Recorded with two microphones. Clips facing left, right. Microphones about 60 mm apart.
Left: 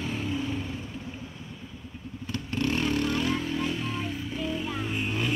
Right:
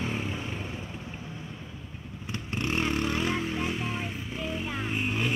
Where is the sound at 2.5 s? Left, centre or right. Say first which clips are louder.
Left 2 dB; right.